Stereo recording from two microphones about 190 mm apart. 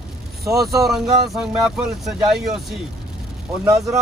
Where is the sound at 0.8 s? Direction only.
Centre (ahead or behind).